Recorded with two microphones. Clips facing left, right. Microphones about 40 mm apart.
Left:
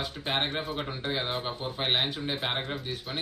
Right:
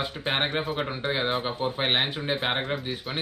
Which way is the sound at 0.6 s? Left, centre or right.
Centre.